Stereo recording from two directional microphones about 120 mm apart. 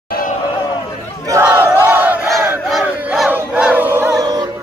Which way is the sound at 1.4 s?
15° right (ahead or behind).